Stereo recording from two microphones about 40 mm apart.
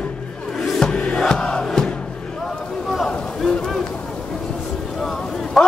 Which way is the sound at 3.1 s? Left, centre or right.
Left.